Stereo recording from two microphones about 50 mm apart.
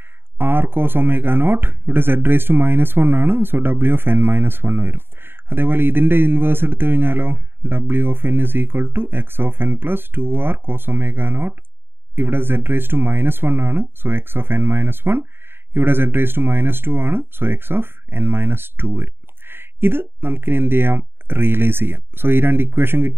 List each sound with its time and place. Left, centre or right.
0.4 s speech: right